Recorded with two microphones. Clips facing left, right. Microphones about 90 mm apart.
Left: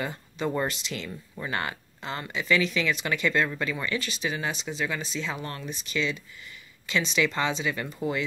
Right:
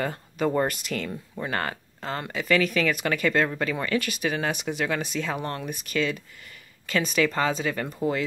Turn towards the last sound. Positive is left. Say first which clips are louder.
# right 2 dB
turn(degrees=-45)  # may be behind; listen again after turning